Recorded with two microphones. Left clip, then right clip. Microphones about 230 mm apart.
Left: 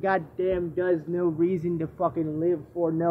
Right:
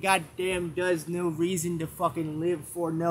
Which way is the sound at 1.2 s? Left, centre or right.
Right.